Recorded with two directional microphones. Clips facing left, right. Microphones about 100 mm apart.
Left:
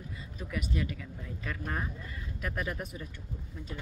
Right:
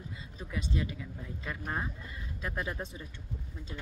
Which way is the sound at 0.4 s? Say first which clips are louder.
Left 1 dB; 25° right (ahead or behind).